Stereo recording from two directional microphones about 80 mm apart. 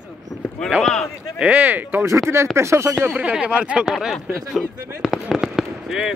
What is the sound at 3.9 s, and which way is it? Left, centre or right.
A man's voice, centre.